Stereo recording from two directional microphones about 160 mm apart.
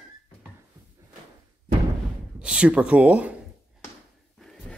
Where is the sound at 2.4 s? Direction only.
5° right (ahead or behind).